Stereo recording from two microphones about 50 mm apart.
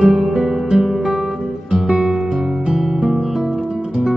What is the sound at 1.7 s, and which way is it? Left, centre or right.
Music, centre.